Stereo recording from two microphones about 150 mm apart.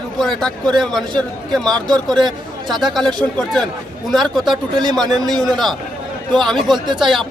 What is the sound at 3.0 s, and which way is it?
Speech, 30° right (ahead or behind).